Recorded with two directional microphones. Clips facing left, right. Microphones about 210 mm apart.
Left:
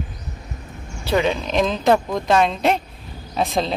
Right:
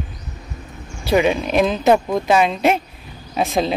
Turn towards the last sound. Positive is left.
turn(degrees=-5)  # may be behind; listen again after turning